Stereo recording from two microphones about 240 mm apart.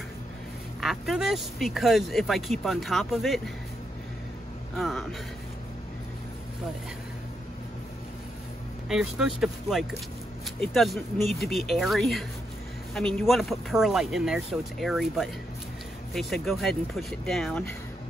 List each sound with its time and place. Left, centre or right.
0.7 s speech: centre
4.7 s speech: centre
8.8 s speech: centre